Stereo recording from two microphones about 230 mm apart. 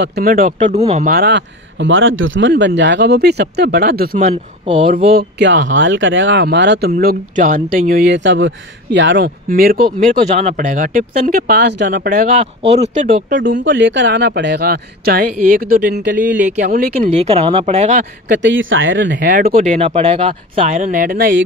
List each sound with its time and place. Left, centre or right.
0.0 s speech: right
1.1 s speech: right
5.1 s speech: right
12.4 s speech: right
13.4 s speech: right
18.3 s speech: right
19.3 s speech: right